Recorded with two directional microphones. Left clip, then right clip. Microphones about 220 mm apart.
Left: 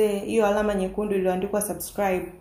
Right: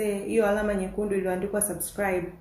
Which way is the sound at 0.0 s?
30° left (ahead or behind).